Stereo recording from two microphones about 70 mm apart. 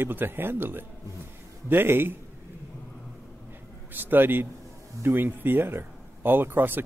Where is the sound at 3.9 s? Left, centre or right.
Right.